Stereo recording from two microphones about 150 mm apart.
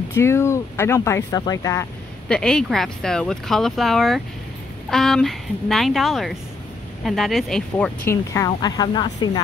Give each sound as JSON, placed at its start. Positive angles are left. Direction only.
{"t": 0.1, "sound": "speech", "side_deg": 15}
{"t": 2.2, "sound": "speech", "side_deg": 5}